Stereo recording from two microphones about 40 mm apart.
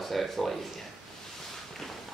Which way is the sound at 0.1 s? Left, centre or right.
Centre.